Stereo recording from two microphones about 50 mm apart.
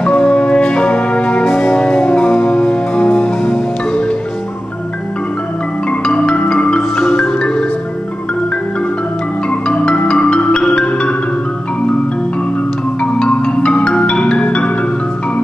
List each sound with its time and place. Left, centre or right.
0.0 s music: left
1.5 s music: left
1.8 s music: left
5.9 s music: left
9.5 s music: left
13.0 s marimba: left